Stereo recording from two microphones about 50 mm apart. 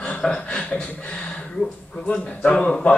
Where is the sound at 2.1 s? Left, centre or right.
Left.